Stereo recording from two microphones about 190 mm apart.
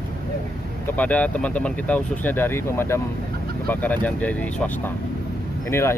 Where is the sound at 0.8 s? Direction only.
10° left (ahead or behind).